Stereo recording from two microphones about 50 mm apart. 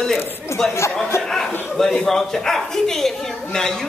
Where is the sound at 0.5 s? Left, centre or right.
Left.